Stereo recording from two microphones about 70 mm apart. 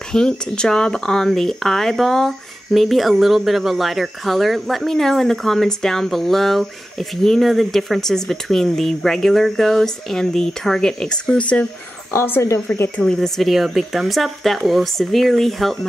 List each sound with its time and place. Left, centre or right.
0.1 s speech: centre
12.1 s speech: left
12.9 s speech: centre
13.4 s speech: centre